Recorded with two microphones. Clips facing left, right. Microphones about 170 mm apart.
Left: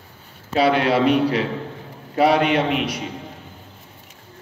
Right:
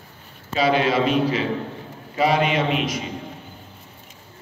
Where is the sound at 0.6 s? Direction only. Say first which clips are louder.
Left 2 dB; 65° left (ahead or behind).